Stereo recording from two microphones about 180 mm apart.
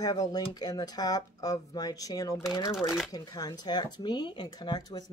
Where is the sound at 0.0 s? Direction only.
20° left (ahead or behind).